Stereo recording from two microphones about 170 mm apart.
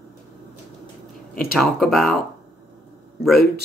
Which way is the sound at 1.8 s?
Centre (ahead or behind).